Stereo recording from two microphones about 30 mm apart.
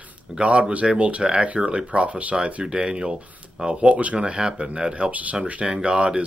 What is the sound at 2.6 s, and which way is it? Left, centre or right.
Speech, right.